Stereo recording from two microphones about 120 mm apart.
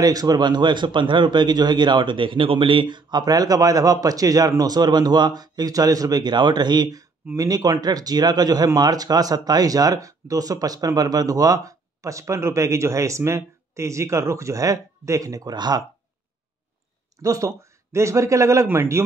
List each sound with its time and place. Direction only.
0.0 s a man's voice: 30° right (ahead or behind)
17.2 s speech: 25° right (ahead or behind)